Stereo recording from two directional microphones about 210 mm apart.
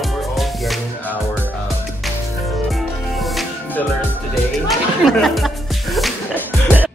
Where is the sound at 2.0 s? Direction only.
Centre (ahead or behind).